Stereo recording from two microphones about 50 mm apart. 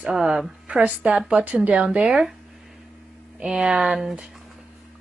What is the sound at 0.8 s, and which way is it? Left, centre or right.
A woman's voice, right.